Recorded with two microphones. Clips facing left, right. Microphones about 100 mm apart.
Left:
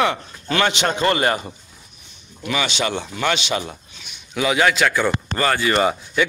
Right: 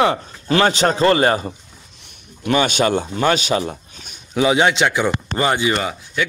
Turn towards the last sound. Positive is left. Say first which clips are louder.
# left 4 dB
turn(degrees=15)  # may be behind; listen again after turning